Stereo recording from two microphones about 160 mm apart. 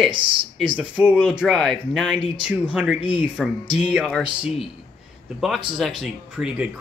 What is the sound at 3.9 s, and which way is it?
Speech, 5° left (ahead or behind).